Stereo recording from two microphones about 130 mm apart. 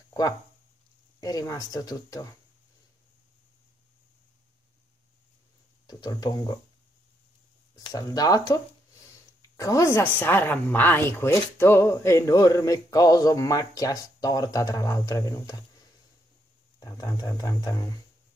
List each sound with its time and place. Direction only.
1.2 s speech: 25° left (ahead or behind)
5.9 s speech: 30° left (ahead or behind)
7.7 s a woman's voice: 30° left (ahead or behind)
16.8 s speech: 30° left (ahead or behind)